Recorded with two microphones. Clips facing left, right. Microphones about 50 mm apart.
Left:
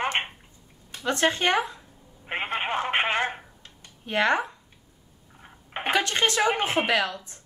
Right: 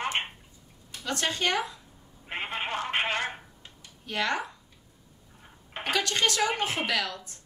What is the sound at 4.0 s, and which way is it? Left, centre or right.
Speech, left.